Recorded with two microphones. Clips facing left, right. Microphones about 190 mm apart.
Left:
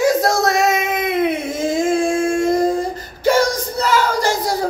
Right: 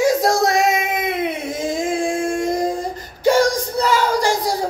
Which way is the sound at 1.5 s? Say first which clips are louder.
Left 4 dB; centre (ahead or behind).